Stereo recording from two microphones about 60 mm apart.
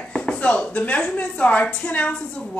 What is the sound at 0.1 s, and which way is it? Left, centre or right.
Speech, centre.